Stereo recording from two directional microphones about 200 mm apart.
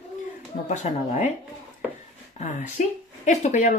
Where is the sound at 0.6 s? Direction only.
35° left (ahead or behind).